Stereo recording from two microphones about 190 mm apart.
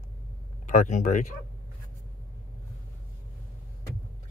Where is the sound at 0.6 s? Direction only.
40° left (ahead or behind).